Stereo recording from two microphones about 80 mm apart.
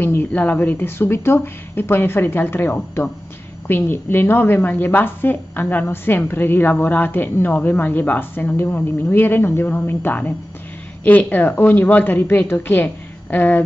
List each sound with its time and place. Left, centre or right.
0.0 s a woman's voice: left